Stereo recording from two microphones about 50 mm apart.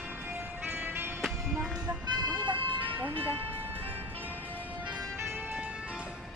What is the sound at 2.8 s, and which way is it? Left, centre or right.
Music, right.